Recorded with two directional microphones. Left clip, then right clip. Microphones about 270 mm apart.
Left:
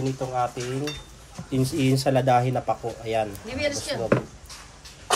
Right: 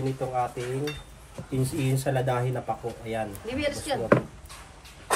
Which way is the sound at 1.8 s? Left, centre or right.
Left.